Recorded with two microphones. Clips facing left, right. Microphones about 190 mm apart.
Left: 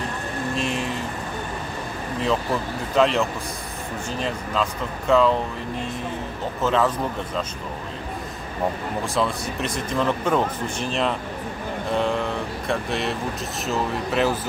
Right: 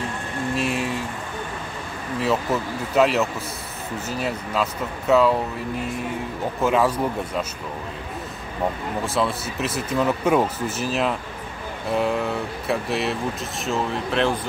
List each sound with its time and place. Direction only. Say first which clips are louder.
0.6 s vehicle: right 3 dB; 5° right (ahead or behind)
2.2 s speech: right 1 dB; 5° right (ahead or behind)
6.6 s speech: right 1 dB; 10° right (ahead or behind)
9.0 s speech: right 1 dB; centre (ahead or behind)